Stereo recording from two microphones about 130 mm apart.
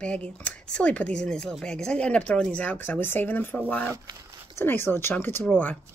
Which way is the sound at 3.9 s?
30° right (ahead or behind).